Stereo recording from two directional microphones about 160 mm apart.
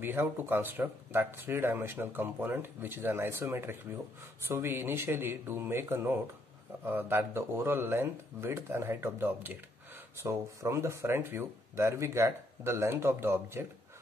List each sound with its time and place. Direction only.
0.0 s speech: 15° right (ahead or behind)